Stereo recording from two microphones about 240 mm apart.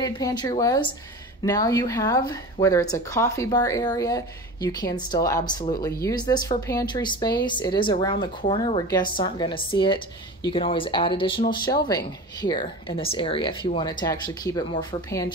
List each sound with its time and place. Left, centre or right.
0.0 s speech: centre